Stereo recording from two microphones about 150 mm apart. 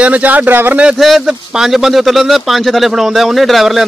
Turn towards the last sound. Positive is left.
turn(degrees=0)  # may be behind; listen again after turning